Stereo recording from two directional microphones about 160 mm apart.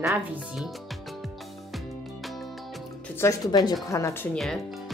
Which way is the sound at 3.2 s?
20° left (ahead or behind).